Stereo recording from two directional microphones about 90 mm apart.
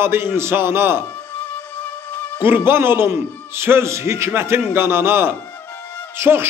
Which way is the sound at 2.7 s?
25° right (ahead or behind).